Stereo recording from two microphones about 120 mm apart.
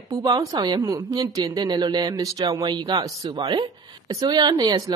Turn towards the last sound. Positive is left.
turn(degrees=-35)  # may be behind; listen again after turning